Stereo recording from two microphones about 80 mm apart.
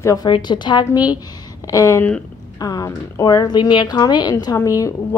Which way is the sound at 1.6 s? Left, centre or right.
Left.